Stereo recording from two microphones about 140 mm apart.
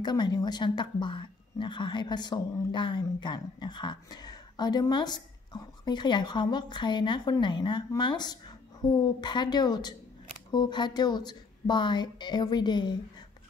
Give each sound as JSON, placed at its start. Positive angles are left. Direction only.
{"t": 0.0, "sound": "a woman's voice", "side_deg": 30}